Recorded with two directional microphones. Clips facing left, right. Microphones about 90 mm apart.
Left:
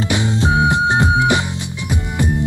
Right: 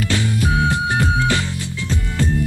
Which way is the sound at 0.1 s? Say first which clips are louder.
Left 3 dB; 25° left (ahead or behind).